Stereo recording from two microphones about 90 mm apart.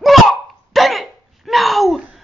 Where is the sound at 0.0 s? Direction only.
Centre (ahead or behind).